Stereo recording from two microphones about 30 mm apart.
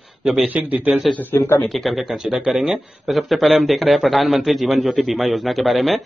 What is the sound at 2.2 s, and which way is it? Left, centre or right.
Speech, right.